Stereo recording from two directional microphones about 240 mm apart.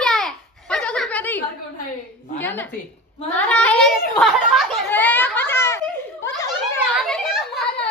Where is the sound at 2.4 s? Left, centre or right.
Centre.